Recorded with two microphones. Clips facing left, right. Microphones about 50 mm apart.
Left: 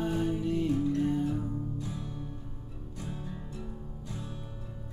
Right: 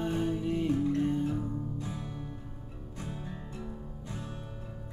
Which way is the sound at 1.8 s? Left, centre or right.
Right.